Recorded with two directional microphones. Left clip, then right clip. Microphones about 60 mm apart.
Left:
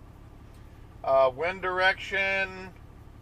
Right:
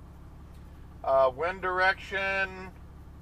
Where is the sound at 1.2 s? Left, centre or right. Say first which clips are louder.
Left 1 dB; centre.